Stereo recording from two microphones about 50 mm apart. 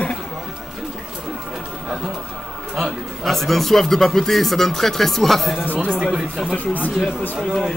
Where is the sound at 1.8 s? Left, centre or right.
Centre.